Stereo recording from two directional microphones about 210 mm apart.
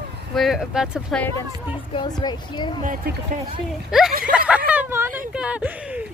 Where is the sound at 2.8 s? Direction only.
40° right (ahead or behind).